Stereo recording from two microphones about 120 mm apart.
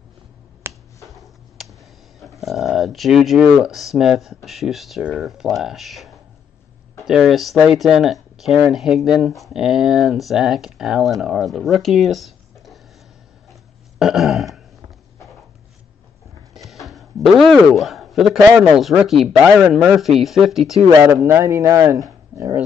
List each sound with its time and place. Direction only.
0.7 s finger snapping: 20° right (ahead or behind)
1.0 s a sound: centre (ahead or behind)
5.0 s speech: 5° right (ahead or behind)
13.5 s burping: centre (ahead or behind)
16.8 s speech: centre (ahead or behind)
21.0 s speech: 20° right (ahead or behind)